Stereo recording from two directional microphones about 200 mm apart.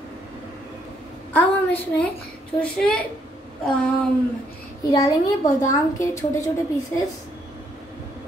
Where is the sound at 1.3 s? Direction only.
5° left (ahead or behind).